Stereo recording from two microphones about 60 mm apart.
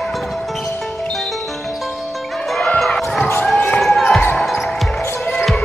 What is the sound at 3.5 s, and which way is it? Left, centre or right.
Basketball bounce, left.